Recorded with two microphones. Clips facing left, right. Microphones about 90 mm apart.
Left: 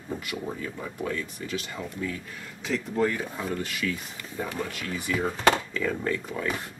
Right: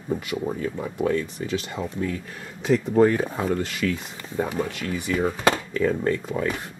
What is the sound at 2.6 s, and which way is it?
Speech, 60° right (ahead or behind).